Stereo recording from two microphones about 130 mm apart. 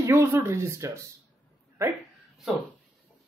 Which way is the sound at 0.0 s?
20° right (ahead or behind).